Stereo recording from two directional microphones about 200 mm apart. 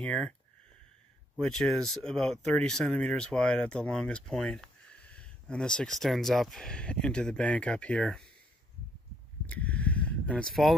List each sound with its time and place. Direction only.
0.0 s speech: 5° left (ahead or behind)
1.3 s speech: centre (ahead or behind)
9.5 s a sound: 5° left (ahead or behind)